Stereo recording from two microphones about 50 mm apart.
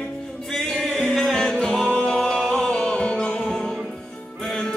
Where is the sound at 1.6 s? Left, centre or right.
Centre.